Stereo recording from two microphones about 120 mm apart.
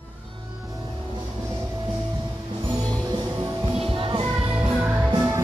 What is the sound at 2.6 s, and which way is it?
Music, 40° right (ahead or behind).